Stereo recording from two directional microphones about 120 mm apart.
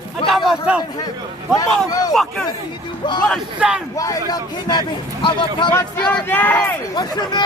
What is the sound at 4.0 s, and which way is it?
A man's voice, 30° left (ahead or behind).